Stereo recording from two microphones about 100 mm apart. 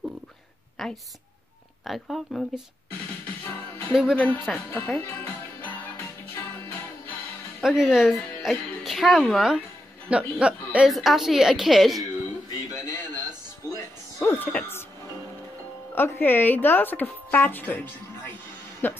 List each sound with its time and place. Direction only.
0.8 s a woman's voice: centre (ahead or behind)
3.9 s speech: centre (ahead or behind)
4.8 s music: 15° left (ahead or behind)
7.6 s speech: 5° right (ahead or behind)
10.9 s speech: centre (ahead or behind)
12.4 s a sound: 30° left (ahead or behind)
14.3 s music: 20° left (ahead or behind)
15.9 s speech: 20° left (ahead or behind)